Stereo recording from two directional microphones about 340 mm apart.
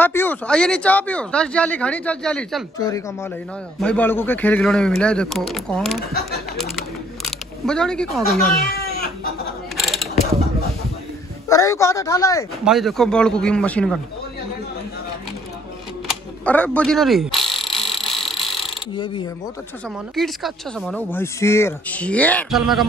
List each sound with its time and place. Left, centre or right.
0.0 s speech: centre
8.5 s a sound: left
9.8 s mechanisms: centre
11.4 s speech: centre
16.1 s a sound: centre
20.2 s speech: centre